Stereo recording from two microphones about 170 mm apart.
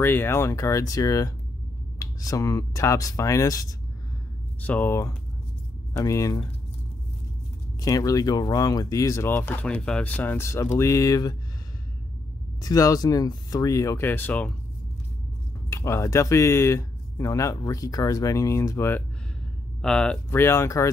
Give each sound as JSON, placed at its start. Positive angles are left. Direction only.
{"t": 0.0, "sound": "speech", "side_deg": 15}
{"t": 7.8, "sound": "speech", "side_deg": 20}
{"t": 12.6, "sound": "speech", "side_deg": 20}
{"t": 15.7, "sound": "speech", "side_deg": 15}
{"t": 19.8, "sound": "speech", "side_deg": 5}
{"t": 20.2, "sound": "speech", "side_deg": 15}